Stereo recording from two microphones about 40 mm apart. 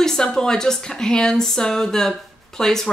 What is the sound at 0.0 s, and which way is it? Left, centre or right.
Speech, centre.